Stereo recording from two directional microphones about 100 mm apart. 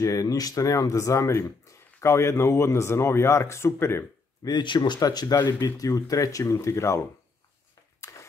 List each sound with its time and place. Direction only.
0.0 s speech: 35° left (ahead or behind)
4.5 s speech: 45° left (ahead or behind); by 7.1 s 30° left (ahead or behind)
8.1 s a sound: 30° left (ahead or behind)